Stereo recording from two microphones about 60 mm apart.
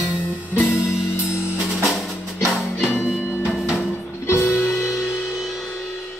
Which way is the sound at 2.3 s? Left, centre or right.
Left.